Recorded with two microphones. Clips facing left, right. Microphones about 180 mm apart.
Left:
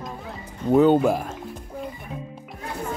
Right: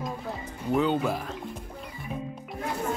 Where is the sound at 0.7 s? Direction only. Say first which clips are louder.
Left 8 dB; 45° left (ahead or behind).